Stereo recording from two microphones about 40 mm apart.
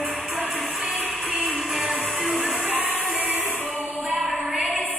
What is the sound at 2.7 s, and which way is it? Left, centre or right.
Music, right.